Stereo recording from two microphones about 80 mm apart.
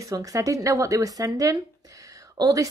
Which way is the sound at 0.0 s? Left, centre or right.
Right.